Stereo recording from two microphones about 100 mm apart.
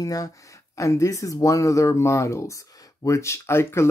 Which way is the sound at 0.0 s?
35° left (ahead or behind).